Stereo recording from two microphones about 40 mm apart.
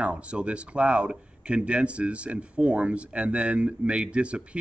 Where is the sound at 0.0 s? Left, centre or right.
Right.